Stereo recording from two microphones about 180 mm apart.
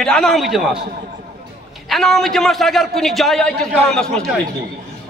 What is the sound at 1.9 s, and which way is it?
A man's voice, centre (ahead or behind).